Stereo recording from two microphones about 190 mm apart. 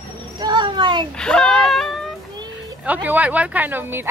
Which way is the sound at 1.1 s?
5° left (ahead or behind).